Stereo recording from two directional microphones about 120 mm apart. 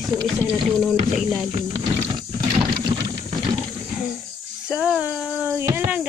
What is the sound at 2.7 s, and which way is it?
Vehicle, 35° right (ahead or behind).